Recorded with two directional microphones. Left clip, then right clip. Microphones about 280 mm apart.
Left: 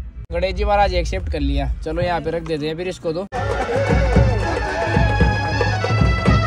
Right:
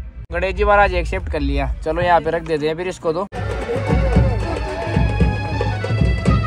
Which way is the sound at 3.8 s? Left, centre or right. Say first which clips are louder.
Left 2 dB; right.